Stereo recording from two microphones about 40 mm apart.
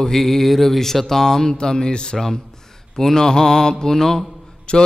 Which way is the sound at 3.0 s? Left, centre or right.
Centre.